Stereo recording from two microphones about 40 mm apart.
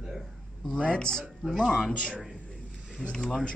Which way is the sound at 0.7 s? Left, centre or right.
Left.